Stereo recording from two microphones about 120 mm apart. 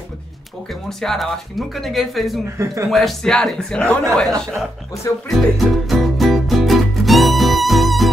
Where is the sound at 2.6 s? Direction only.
25° right (ahead or behind).